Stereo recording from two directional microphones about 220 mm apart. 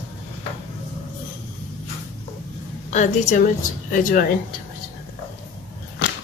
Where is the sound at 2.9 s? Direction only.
30° left (ahead or behind).